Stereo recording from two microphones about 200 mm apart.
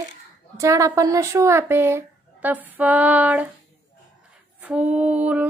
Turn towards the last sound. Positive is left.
turn(degrees=-5)  # may be behind; listen again after turning